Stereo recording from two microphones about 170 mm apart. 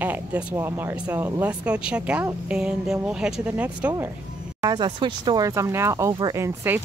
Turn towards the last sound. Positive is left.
turn(degrees=-15)  # may be behind; listen again after turning